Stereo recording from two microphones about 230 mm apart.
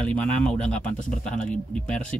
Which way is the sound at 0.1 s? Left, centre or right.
Centre.